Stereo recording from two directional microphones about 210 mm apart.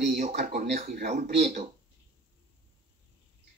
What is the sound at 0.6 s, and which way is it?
Speech, 50° right (ahead or behind).